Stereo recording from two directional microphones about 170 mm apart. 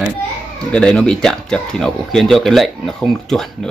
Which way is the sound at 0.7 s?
5° left (ahead or behind).